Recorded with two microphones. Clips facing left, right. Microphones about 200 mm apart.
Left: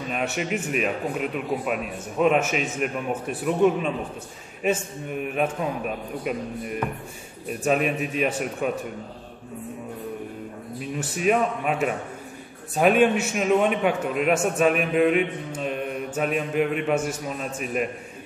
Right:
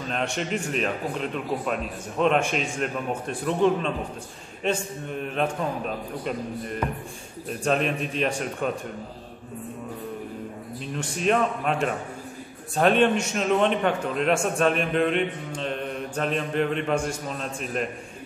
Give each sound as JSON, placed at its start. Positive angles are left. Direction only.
{"t": 0.1, "sound": "a man's voice", "side_deg": 5}
{"t": 10.8, "sound": "a man's voice", "side_deg": 5}